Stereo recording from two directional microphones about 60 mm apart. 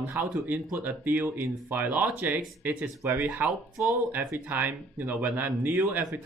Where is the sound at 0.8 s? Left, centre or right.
Right.